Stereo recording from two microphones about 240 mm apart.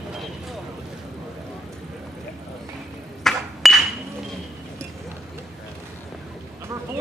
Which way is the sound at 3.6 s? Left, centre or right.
Centre.